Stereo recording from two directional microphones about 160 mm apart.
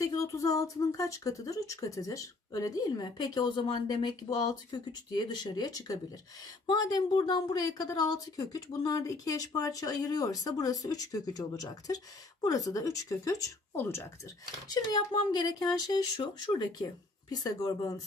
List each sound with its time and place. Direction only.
0.0 s speech: 20° left (ahead or behind)